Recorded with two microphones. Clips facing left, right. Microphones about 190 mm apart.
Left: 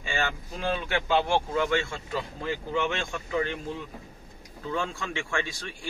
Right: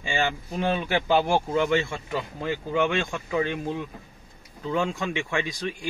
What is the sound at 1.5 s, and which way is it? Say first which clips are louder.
Speech: right 3 dB; 25° right (ahead or behind).